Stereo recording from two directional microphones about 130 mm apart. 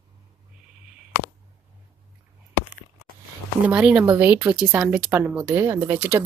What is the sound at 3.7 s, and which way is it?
Speech, 10° right (ahead or behind).